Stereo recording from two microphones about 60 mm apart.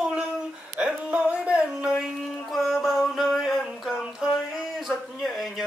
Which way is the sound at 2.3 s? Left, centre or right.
Centre.